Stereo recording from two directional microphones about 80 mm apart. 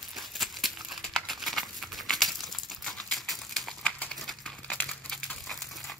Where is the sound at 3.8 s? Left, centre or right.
Centre.